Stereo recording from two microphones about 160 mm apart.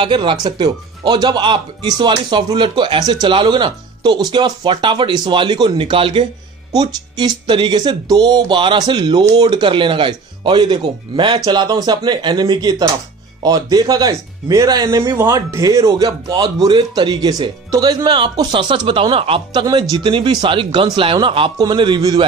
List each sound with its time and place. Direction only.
0.0 s speech: 30° right (ahead or behind)
19.6 s speech: 25° right (ahead or behind)